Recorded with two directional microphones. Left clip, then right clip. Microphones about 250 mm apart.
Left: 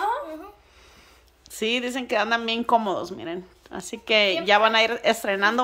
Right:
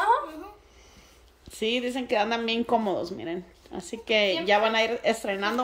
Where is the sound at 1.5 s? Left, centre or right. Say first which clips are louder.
Left 2 dB; centre.